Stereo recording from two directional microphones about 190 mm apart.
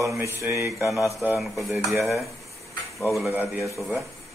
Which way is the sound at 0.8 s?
15° left (ahead or behind).